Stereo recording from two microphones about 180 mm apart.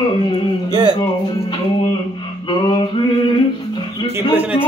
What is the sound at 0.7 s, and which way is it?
Speech, 25° right (ahead or behind).